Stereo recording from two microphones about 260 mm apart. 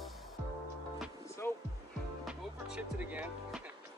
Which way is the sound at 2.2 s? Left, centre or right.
Centre.